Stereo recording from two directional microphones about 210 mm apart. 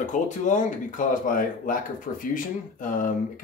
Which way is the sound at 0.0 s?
35° left (ahead or behind).